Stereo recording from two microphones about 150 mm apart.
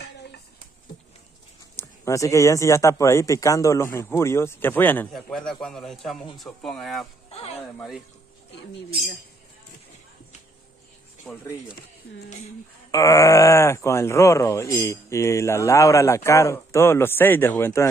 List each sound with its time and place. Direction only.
1.8 s a man's voice: 20° left (ahead or behind); by 7.1 s centre (ahead or behind)
7.2 s a sound: 45° left (ahead or behind)
11.3 s a man's voice: 5° left (ahead or behind)
12.9 s speech: 20° left (ahead or behind)